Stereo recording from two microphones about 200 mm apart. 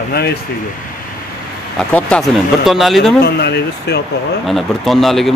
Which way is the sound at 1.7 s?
5° left (ahead or behind).